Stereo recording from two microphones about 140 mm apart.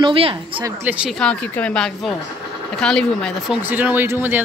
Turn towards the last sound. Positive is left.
turn(degrees=-15)  # may be behind; listen again after turning